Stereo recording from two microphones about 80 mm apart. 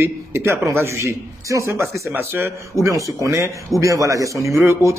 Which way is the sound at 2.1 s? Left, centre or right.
Right.